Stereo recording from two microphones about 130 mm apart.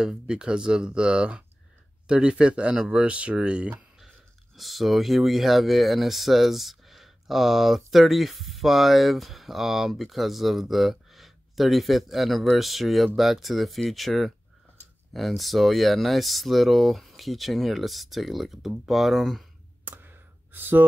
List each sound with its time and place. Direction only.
0.0 s speech: 5° right (ahead or behind)
19.8 s clicking: 15° right (ahead or behind)